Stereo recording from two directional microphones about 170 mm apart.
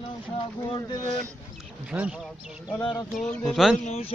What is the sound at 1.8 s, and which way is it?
Speech, 5° right (ahead or behind).